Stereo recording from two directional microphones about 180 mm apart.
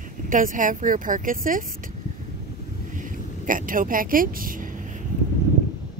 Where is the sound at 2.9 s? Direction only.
45° right (ahead or behind).